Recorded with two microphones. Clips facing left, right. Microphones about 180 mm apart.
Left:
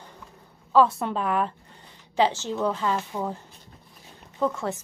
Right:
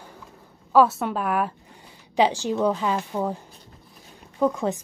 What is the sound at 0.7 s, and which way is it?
A woman's voice, 5° right (ahead or behind).